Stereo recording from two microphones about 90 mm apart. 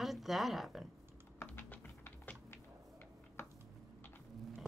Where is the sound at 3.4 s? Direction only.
30° left (ahead or behind).